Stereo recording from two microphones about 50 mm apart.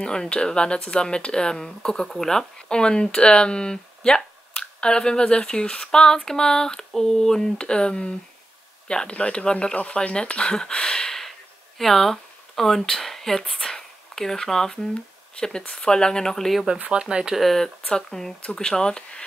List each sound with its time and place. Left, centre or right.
0.0 s speech: centre
16.6 s speech: right
17.0 s speech: centre
17.4 s speech: centre
17.8 s speech: centre